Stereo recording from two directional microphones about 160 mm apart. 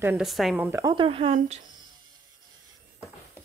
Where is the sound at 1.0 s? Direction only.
35° right (ahead or behind).